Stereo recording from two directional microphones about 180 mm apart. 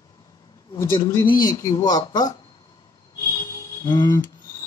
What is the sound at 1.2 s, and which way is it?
Speech, 25° left (ahead or behind).